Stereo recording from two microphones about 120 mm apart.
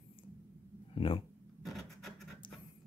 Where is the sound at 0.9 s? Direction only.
50° left (ahead or behind).